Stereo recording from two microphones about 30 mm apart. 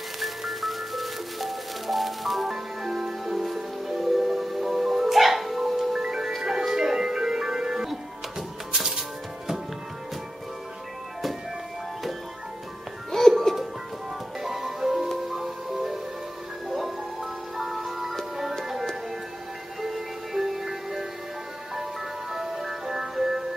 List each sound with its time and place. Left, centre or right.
0.2 s music: centre
13.1 s music: centre
14.4 s music: centre
19.8 s music: centre
22.3 s music: centre